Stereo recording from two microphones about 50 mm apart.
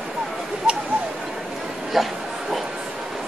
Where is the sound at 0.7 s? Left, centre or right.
Right.